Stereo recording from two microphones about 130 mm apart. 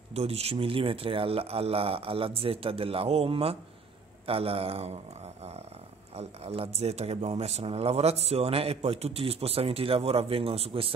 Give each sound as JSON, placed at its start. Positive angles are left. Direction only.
{"t": 0.1, "sound": "a man's voice", "side_deg": -50}